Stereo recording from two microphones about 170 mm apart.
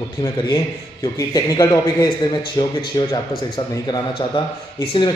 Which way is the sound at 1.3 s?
20° left (ahead or behind).